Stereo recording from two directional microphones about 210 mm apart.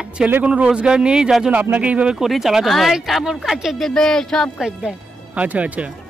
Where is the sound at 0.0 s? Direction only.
5° right (ahead or behind).